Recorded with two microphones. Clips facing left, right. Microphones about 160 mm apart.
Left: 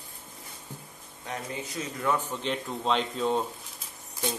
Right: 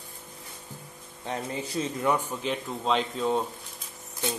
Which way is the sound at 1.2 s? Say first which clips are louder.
Right 3 dB; 30° right (ahead or behind).